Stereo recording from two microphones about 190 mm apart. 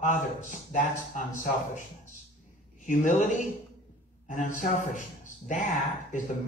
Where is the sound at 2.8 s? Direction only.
40° left (ahead or behind).